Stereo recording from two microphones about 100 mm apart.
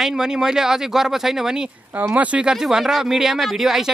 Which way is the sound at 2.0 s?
15° right (ahead or behind).